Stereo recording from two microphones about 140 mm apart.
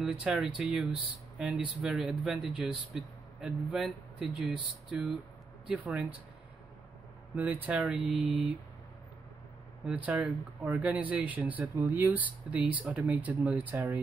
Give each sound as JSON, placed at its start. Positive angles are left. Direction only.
{"t": 0.0, "sound": "speech", "side_deg": -5}
{"t": 7.3, "sound": "speech", "side_deg": -10}
{"t": 9.8, "sound": "speech", "side_deg": -10}